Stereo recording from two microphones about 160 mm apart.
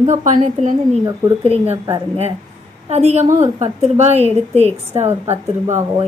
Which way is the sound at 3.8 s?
45° right (ahead or behind).